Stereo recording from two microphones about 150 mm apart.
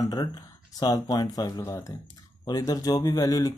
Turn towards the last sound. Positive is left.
turn(degrees=25)  # may be behind; listen again after turning